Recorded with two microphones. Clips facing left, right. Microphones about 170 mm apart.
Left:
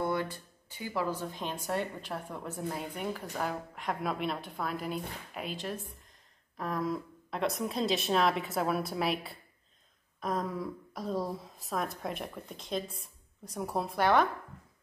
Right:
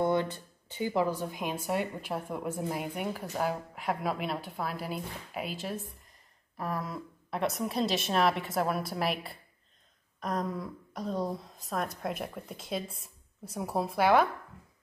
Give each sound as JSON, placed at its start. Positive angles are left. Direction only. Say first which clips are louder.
{"t": 0.0, "sound": "a woman's voice", "louder": "right 4 dB", "side_deg": -25}
{"t": 10.9, "sound": "speech", "louder": "right 2 dB", "side_deg": 5}